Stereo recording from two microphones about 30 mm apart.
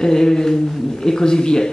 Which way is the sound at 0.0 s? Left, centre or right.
Centre.